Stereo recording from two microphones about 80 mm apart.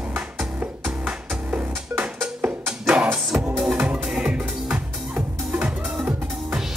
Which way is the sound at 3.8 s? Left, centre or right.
Centre.